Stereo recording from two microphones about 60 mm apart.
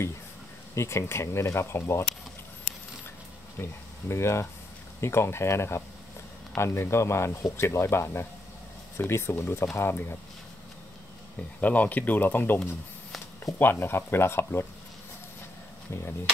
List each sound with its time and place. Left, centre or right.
0.7 s speech: left
4.1 s speech: left
11.6 s speech: left
13.6 s speech: left
15.9 s speech: left